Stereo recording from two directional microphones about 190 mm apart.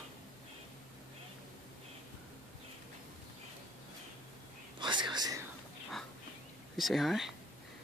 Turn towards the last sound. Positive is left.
turn(degrees=0)  # may be behind; listen again after turning